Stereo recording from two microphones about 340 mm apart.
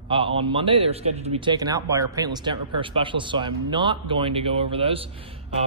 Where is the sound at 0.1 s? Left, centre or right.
Centre.